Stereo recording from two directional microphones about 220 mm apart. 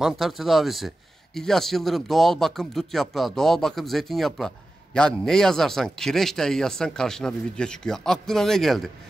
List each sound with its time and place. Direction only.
0.0 s speech: centre (ahead or behind)